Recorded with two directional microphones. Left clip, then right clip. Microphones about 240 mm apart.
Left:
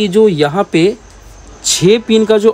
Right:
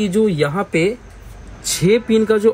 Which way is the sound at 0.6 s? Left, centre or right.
Left.